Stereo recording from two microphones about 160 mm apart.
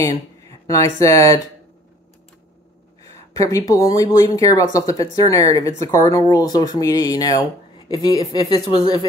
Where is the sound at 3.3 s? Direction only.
20° left (ahead or behind).